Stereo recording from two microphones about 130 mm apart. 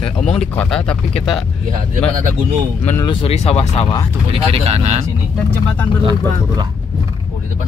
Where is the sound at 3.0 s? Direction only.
50° left (ahead or behind).